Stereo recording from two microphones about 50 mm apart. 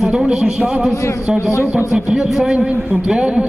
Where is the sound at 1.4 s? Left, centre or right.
Left.